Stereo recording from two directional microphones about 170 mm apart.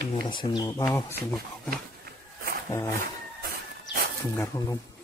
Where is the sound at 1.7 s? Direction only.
60° right (ahead or behind).